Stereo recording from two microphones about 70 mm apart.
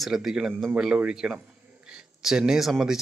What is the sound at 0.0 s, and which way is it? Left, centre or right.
Speech, centre.